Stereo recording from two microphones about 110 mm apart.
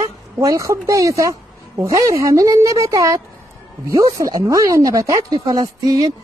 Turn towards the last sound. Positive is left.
turn(degrees=-30)  # may be behind; listen again after turning